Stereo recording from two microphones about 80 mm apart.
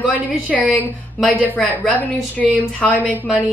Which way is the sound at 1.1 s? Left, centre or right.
Centre.